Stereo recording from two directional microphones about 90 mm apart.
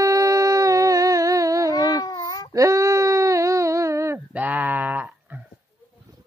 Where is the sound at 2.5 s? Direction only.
35° right (ahead or behind).